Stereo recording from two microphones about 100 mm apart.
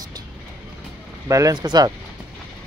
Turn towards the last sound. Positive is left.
turn(degrees=-45)  # may be behind; listen again after turning